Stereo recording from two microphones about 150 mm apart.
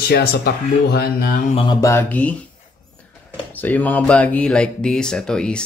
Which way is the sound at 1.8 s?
15° left (ahead or behind).